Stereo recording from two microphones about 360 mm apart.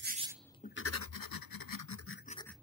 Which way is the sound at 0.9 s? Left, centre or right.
Left.